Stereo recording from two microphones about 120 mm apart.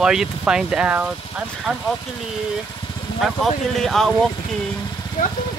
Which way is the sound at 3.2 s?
Centre (ahead or behind).